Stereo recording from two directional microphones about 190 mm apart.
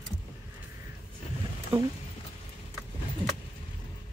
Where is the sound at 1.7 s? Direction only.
30° right (ahead or behind).